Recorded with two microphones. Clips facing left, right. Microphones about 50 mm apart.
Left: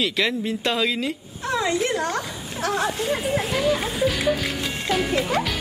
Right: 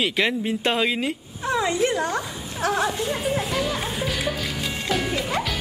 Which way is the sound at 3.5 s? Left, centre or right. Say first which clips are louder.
Left 3 dB; centre.